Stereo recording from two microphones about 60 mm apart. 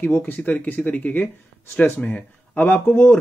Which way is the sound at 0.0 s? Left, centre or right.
Left.